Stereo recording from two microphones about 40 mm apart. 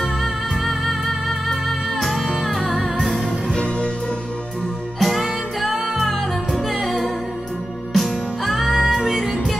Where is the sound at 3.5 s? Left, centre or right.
Left.